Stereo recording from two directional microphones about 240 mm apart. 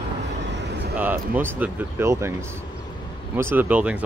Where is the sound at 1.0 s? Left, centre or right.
Centre.